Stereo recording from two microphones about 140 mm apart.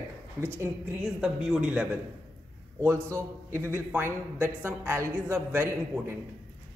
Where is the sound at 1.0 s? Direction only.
5° right (ahead or behind).